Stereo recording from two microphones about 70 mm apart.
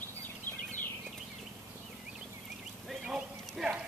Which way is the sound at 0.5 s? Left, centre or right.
Left.